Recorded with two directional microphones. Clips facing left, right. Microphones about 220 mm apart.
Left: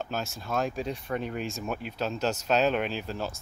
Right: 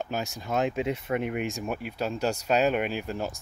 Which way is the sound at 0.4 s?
20° right (ahead or behind).